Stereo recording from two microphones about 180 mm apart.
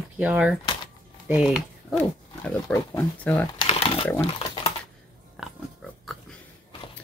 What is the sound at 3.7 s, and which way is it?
Crumpling, 35° left (ahead or behind).